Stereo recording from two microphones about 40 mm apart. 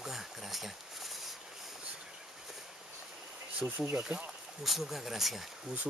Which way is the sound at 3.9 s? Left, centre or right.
Right.